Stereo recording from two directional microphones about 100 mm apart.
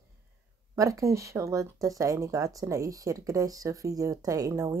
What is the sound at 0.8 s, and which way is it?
Speech, 30° right (ahead or behind).